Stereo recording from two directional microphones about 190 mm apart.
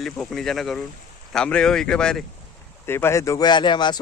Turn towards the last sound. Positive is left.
turn(degrees=25)  # may be behind; listen again after turning